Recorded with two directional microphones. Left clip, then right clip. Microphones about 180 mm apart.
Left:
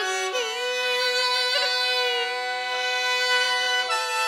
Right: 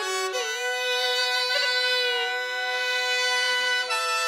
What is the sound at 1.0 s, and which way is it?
Music, 15° left (ahead or behind).